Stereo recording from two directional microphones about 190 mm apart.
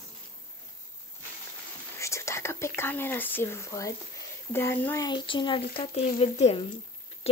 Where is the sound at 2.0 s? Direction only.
15° left (ahead or behind).